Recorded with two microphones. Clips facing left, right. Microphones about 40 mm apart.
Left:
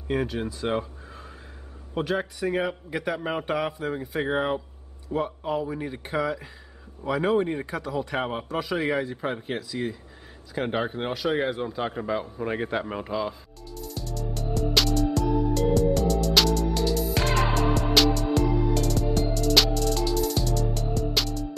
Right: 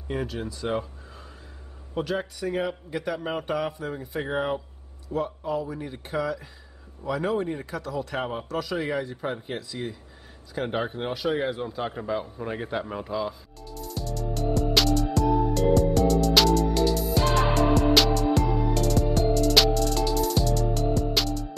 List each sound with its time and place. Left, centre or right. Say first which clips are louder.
0.1 s a man's voice: left 3 dB; centre
5.1 s a man's voice: left 1 dB; left; by 12.5 s centre
12.8 s speech: left 1 dB; left
13.1 s music: even; centre
15.2 s music: right 2 dB; right
15.5 s music: right 1 dB; centre